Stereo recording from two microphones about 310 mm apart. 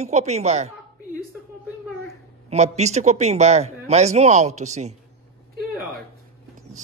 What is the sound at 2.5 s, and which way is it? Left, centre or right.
Speech, right.